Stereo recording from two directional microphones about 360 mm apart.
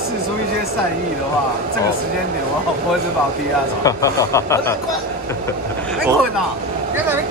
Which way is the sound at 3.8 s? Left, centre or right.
Centre.